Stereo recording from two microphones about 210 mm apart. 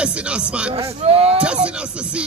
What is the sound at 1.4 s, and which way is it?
Speech, 5° right (ahead or behind).